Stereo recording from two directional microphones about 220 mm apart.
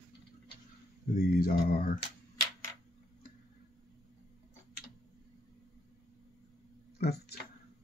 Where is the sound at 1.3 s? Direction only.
40° left (ahead or behind).